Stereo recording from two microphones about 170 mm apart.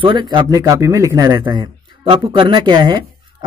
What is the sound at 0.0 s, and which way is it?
Speech, 30° right (ahead or behind).